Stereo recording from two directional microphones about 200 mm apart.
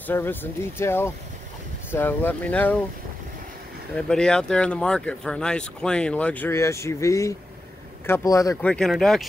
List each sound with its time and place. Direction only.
0.0 s speech: 10° left (ahead or behind)
3.9 s speech: 5° left (ahead or behind)
8.6 s speech: centre (ahead or behind)